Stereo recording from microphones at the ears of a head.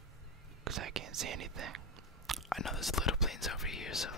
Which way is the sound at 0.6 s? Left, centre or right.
Right.